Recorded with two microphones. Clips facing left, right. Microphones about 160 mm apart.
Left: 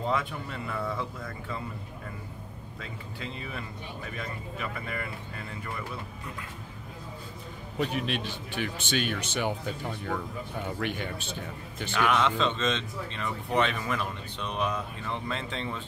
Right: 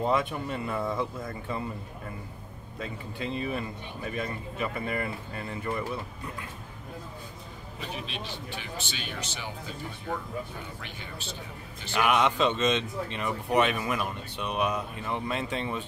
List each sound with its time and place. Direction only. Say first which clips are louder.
0.0 s speech: right 3 dB; 20° right (ahead or behind)
3.2 s speech: right 8 dB; 20° right (ahead or behind)
7.8 s speech: left 8 dB; 60° left (ahead or behind)
11.9 s speech: right 1 dB; 10° right (ahead or behind)